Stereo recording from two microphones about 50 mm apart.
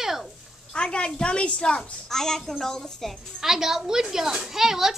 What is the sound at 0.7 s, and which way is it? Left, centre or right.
A woman's voice, centre.